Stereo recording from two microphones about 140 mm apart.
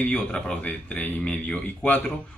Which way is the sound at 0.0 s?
5° left (ahead or behind).